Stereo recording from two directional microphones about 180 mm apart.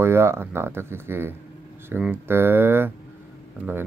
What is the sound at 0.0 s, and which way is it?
Speech, 15° right (ahead or behind).